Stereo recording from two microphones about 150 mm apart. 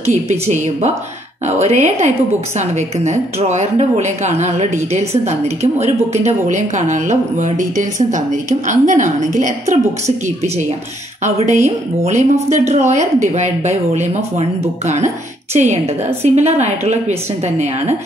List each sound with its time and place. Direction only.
0.0 s a woman's voice: 50° right (ahead or behind)
15.5 s a woman's voice: 45° right (ahead or behind)